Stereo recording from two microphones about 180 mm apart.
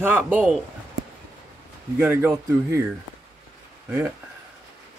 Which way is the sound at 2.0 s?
10° right (ahead or behind).